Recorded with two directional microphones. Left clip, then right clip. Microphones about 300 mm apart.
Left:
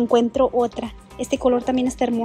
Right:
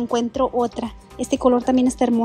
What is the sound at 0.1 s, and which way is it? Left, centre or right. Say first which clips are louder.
Speech: left 2 dB; centre.